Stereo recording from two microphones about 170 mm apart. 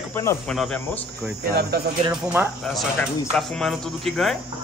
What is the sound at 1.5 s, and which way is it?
Speech, 70° right (ahead or behind).